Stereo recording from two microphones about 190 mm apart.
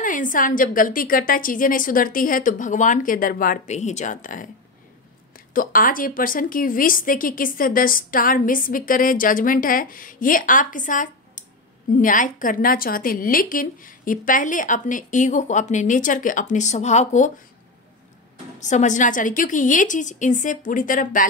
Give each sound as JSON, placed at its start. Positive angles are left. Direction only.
{"t": 0.0, "sound": "a woman's voice", "side_deg": 45}
{"t": 5.5, "sound": "a woman's voice", "side_deg": 45}
{"t": 18.6, "sound": "a woman's voice", "side_deg": 40}